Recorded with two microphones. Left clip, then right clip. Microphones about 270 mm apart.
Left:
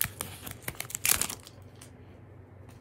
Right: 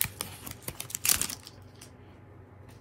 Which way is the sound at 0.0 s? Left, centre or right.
Centre.